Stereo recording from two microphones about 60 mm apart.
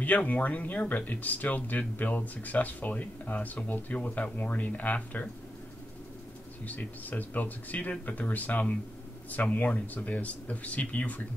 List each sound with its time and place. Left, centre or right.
0.0 s speech: left
6.6 s speech: left